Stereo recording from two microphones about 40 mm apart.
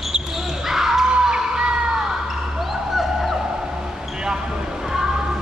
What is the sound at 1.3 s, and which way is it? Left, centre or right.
Music, centre.